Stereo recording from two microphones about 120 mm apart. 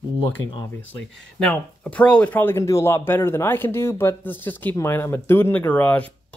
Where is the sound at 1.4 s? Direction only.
10° left (ahead or behind).